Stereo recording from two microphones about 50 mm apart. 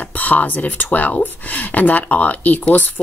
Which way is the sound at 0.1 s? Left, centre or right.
Left.